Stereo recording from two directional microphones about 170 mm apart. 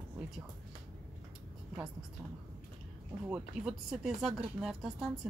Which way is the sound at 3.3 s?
5° right (ahead or behind).